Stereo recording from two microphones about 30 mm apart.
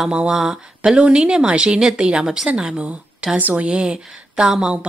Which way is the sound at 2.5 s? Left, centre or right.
Right.